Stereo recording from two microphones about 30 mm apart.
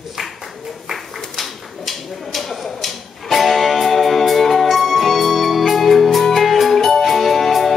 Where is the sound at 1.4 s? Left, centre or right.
Centre.